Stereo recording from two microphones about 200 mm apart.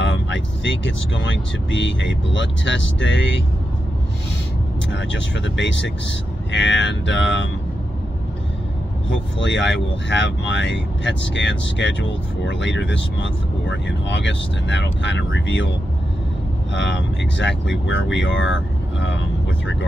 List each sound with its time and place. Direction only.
0.0 s speech: 65° left (ahead or behind)
4.9 s speech: 65° left (ahead or behind)
9.4 s speech: 65° left (ahead or behind)
16.7 s speech: 65° left (ahead or behind)